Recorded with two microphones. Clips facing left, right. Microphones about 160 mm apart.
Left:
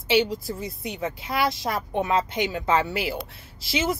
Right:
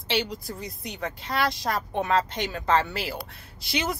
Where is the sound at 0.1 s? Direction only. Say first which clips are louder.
Left 6 dB; 5° left (ahead or behind).